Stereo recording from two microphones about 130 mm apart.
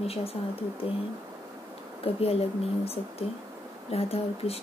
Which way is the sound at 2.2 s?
50° left (ahead or behind).